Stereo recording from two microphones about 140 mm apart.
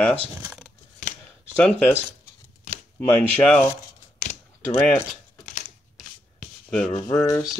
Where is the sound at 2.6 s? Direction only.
65° left (ahead or behind).